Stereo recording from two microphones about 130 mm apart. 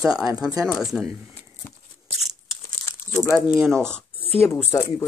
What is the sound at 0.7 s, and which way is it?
Speech, 5° right (ahead or behind).